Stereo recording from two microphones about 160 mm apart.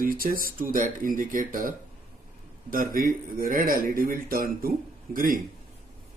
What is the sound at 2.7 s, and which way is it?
Speech, 60° right (ahead or behind).